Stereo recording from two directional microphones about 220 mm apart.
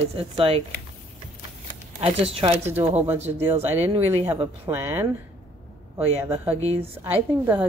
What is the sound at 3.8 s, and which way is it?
Speech, 30° right (ahead or behind).